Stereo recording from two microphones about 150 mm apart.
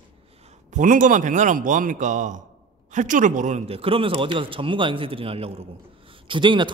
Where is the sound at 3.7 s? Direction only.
35° right (ahead or behind).